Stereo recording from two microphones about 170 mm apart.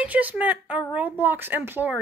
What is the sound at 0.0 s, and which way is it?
Speech, 10° right (ahead or behind).